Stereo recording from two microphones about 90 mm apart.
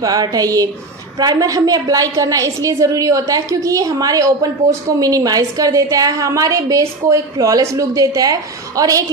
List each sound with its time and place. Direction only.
0.0 s a woman's voice: 45° right (ahead or behind)